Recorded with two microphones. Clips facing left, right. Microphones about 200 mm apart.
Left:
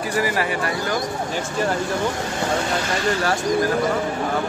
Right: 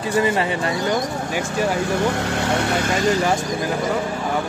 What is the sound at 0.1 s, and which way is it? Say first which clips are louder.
Speech: right 4 dB; 25° right (ahead or behind).